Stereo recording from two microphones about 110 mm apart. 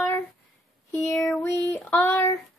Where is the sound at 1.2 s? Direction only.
5° left (ahead or behind).